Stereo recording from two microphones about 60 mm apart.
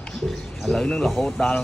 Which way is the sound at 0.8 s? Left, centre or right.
Centre.